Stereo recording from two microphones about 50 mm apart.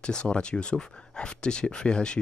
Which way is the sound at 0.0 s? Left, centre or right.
Centre.